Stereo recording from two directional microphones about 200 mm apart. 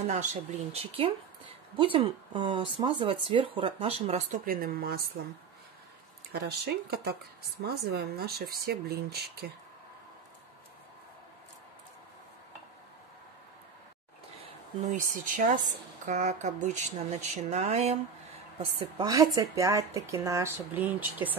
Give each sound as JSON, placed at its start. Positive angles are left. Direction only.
{"t": 0.0, "sound": "speech", "side_deg": -35}
{"t": 1.8, "sound": "speech", "side_deg": -25}
{"t": 4.5, "sound": "speech", "side_deg": -45}
{"t": 6.3, "sound": "speech", "side_deg": -55}
{"t": 14.4, "sound": "speech", "side_deg": -40}
{"t": 18.9, "sound": "speech", "side_deg": -25}